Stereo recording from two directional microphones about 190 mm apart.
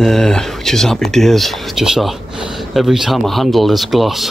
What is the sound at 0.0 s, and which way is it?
Speech, centre (ahead or behind).